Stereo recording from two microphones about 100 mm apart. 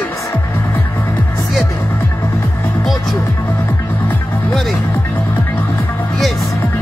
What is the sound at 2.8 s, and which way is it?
Music, centre (ahead or behind).